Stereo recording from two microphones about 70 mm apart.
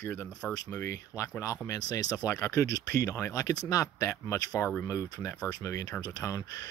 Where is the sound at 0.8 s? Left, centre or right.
Left.